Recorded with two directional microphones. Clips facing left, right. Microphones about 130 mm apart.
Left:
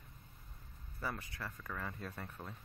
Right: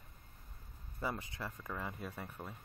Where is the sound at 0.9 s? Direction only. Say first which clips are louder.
Right 3 dB; 20° right (ahead or behind).